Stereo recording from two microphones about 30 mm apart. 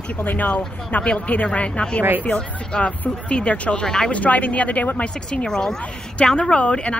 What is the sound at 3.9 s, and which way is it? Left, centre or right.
Speech, left.